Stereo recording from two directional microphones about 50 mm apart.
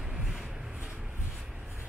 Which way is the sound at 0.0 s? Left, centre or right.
Centre.